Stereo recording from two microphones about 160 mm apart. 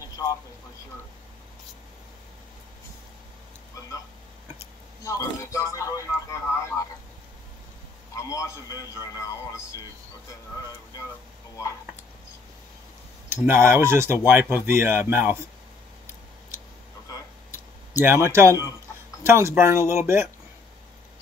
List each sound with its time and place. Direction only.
5.0 s speech: 20° left (ahead or behind)
8.2 s speech: 20° left (ahead or behind)
13.4 s speech: 15° right (ahead or behind)
17.9 s speech: 15° right (ahead or behind)